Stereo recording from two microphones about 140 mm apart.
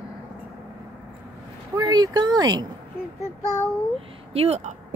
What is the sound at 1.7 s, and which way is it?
Speech, 25° right (ahead or behind).